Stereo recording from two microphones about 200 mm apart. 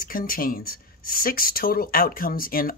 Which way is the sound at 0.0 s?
45° left (ahead or behind).